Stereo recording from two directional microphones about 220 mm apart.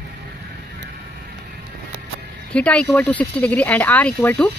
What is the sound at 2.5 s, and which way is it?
Speech, 5° left (ahead or behind).